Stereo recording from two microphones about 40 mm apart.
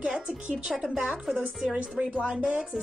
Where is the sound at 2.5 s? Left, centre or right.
Right.